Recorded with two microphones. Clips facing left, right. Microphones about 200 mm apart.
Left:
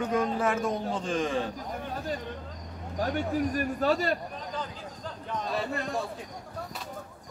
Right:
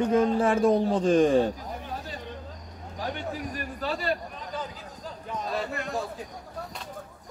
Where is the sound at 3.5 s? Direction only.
45° left (ahead or behind).